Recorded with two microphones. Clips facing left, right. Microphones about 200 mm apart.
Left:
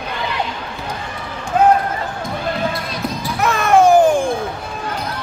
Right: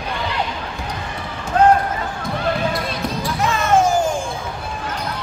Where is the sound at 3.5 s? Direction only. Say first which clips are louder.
Left 6 dB; 60° left (ahead or behind).